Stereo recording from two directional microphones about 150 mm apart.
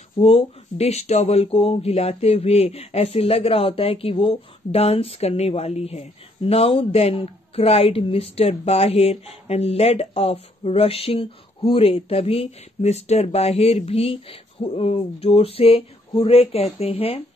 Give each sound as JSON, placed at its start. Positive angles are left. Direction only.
{"t": 0.2, "sound": "speech", "side_deg": 40}